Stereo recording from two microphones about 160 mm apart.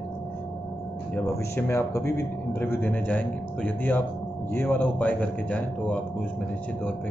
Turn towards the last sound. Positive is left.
turn(degrees=10)  # may be behind; listen again after turning